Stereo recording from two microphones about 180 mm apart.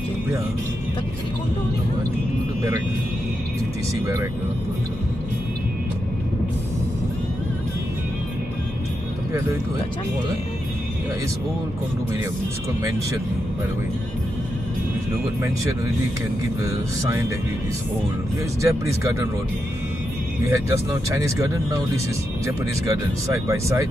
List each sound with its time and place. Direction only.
4.0 s speech: 15° right (ahead or behind)
18.6 s speech: 15° right (ahead or behind)
21.1 s speech: 15° right (ahead or behind)
22.8 s speech: 15° right (ahead or behind)